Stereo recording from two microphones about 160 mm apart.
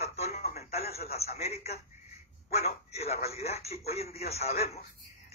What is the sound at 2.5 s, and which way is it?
A man's voice, 40° left (ahead or behind).